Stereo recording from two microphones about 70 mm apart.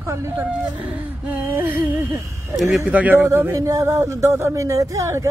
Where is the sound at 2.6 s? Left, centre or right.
Centre.